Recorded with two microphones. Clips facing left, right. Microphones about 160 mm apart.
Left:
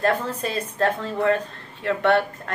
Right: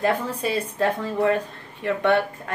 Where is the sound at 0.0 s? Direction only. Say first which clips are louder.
Even; 10° right (ahead or behind).